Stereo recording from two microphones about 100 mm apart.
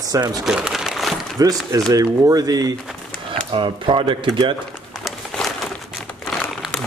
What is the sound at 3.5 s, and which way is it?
Speech, 60° right (ahead or behind).